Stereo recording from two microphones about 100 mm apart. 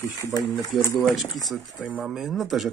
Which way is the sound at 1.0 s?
Centre (ahead or behind).